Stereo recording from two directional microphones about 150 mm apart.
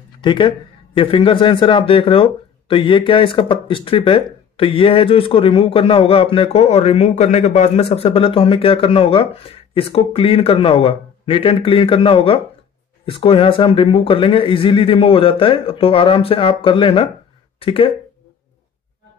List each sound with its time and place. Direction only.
0.2 s a man's voice: 30° left (ahead or behind)